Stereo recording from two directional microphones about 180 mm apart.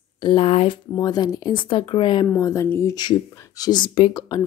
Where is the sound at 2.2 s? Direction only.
15° left (ahead or behind).